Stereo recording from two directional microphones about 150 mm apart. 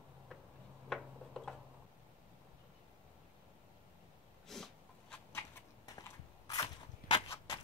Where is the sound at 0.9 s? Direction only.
Centre (ahead or behind).